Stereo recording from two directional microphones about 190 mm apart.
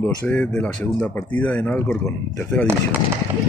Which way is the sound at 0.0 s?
10° left (ahead or behind).